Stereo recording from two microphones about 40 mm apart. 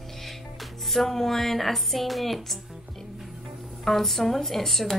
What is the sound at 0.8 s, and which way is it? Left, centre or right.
A woman's voice, centre.